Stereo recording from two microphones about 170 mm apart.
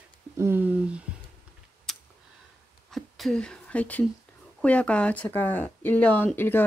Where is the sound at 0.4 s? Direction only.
15° right (ahead or behind).